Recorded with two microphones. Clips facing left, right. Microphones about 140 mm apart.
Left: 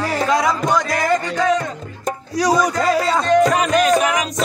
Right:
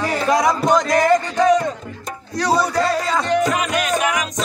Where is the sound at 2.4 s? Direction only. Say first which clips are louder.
Left 1 dB; 10° left (ahead or behind).